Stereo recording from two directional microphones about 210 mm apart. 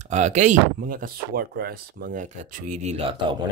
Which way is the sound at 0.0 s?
35° right (ahead or behind).